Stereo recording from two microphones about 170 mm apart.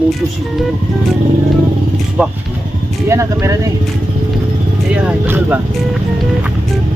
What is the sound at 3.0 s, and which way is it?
Speech, 15° right (ahead or behind).